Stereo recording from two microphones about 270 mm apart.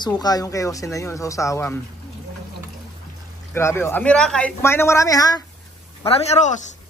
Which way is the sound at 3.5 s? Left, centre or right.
Centre.